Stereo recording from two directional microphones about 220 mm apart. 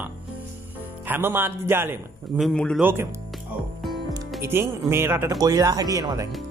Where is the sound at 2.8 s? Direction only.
10° right (ahead or behind).